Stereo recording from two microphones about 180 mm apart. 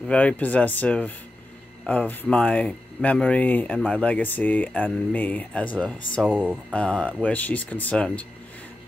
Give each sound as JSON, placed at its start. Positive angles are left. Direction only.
{"t": 0.1, "sound": "speech", "side_deg": 5}
{"t": 6.2, "sound": "speech", "side_deg": -5}
{"t": 6.7, "sound": "speech", "side_deg": 5}